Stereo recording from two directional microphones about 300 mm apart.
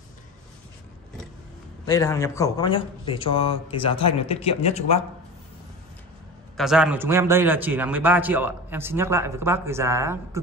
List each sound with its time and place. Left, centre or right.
1.9 s speech: centre
6.5 s a man's voice: centre